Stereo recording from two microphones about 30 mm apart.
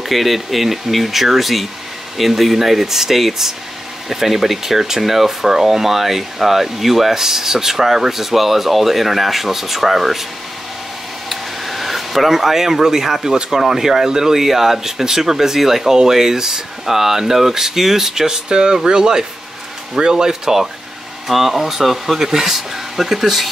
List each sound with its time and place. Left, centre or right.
0.0 s speech: centre
11.2 s speech: centre
21.3 s speech: centre